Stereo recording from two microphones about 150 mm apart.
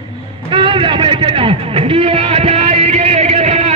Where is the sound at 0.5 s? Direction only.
35° right (ahead or behind).